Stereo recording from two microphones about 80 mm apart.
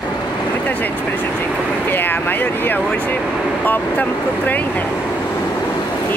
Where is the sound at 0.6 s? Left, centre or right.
Left.